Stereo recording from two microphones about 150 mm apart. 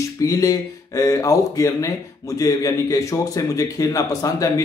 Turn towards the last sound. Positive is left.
turn(degrees=20)  # may be behind; listen again after turning